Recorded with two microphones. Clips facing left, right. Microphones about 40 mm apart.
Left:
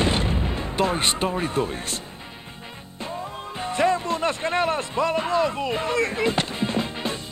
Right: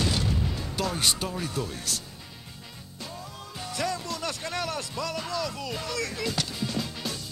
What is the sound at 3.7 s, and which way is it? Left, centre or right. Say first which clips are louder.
Music: left 9 dB; left.